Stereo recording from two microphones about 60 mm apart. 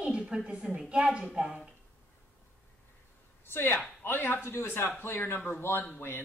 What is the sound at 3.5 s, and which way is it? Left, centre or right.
Speech, left.